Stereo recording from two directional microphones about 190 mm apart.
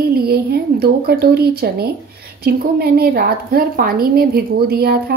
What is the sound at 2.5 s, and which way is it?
A woman's voice, 55° right (ahead or behind).